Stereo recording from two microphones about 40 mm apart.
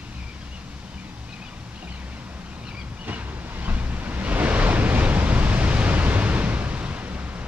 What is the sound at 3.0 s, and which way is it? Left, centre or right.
Waves, right.